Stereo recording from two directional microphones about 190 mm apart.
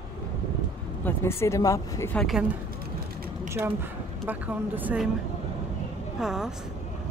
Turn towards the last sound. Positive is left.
turn(degrees=0)  # may be behind; listen again after turning